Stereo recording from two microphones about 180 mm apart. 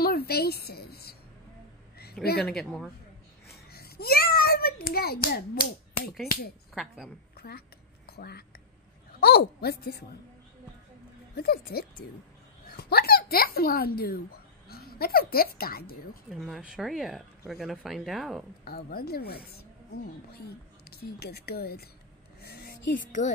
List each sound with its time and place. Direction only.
0.0 s a woman's voice: 60° left (ahead or behind)
2.4 s speech: centre (ahead or behind)
3.4 s a child's voice: 60° left (ahead or behind)
6.7 s a woman's voice: centre (ahead or behind)
7.3 s a woman's voice: 60° left (ahead or behind)
11.3 s speech: 60° left (ahead or behind)
16.3 s speech: centre (ahead or behind)
18.6 s speech: 60° left (ahead or behind)
20.9 s speech: 60° left (ahead or behind); by 23.3 s 45° left (ahead or behind)